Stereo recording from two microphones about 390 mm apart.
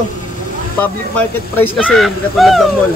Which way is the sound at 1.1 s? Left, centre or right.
Centre.